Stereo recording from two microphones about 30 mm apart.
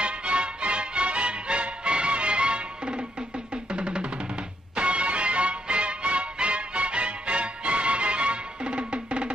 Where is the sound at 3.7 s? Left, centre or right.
Right.